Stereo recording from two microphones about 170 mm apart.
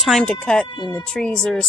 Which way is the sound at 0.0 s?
5° left (ahead or behind).